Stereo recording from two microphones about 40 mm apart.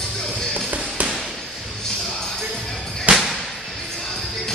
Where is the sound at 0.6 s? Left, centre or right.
Right.